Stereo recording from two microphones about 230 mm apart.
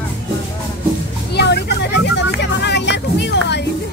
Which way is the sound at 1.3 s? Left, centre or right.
Left.